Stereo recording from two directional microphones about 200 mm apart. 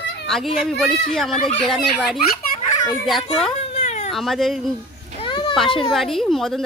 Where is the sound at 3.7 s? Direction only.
35° left (ahead or behind).